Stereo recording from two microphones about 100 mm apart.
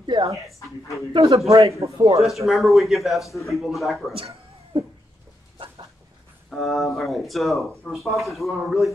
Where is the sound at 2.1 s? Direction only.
Centre (ahead or behind).